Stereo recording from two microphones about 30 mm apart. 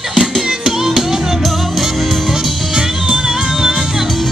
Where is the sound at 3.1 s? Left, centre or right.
Right.